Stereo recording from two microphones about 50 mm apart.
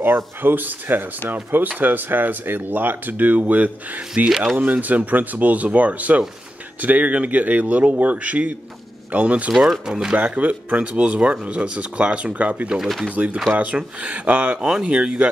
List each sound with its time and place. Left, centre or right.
0.0 s speech: right
9.5 s speech: centre
10.1 s speech: right
12.7 s speech: centre
13.1 s speech: right; by 15.2 s centre